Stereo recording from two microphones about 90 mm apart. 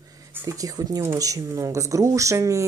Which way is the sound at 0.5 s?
40° right (ahead or behind).